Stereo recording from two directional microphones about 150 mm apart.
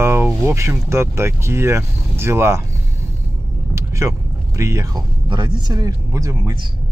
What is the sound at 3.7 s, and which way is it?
Vehicle, 20° right (ahead or behind).